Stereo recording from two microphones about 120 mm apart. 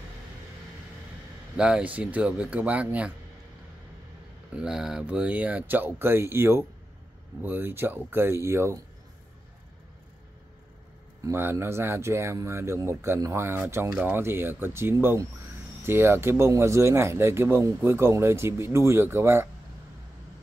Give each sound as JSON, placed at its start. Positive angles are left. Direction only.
{"t": 1.6, "sound": "speech", "side_deg": -10}
{"t": 4.6, "sound": "speech", "side_deg": -5}
{"t": 11.1, "sound": "speech", "side_deg": -20}